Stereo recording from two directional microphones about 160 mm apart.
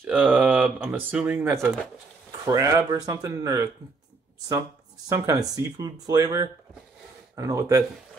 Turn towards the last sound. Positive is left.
turn(degrees=-20)  # may be behind; listen again after turning